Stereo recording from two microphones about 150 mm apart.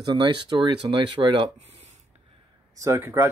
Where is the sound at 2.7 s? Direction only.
20° right (ahead or behind).